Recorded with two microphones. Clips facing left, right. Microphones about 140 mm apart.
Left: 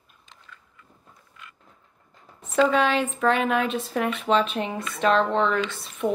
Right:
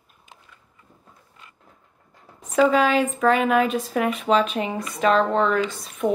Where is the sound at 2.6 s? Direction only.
5° right (ahead or behind).